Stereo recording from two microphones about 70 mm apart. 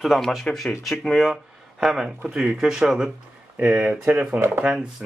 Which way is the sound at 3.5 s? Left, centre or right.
Right.